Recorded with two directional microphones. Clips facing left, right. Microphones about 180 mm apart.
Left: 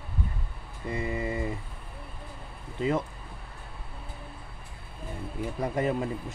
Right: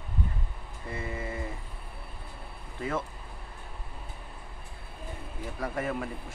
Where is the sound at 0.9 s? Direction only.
15° left (ahead or behind).